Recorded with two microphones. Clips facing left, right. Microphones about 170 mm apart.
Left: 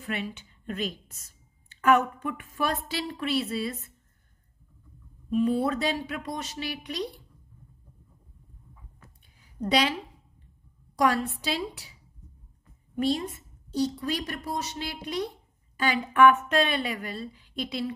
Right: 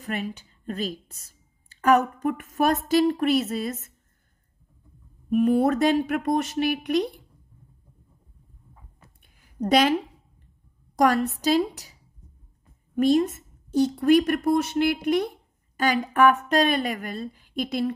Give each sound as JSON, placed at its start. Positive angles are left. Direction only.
{"t": 0.0, "sound": "a woman's voice", "side_deg": -40}
{"t": 5.3, "sound": "a woman's voice", "side_deg": -50}
{"t": 9.4, "sound": "a woman's voice", "side_deg": -50}
{"t": 11.4, "sound": "a woman's voice", "side_deg": -40}
{"t": 13.0, "sound": "a woman's voice", "side_deg": -45}
{"t": 16.1, "sound": "a woman's voice", "side_deg": -40}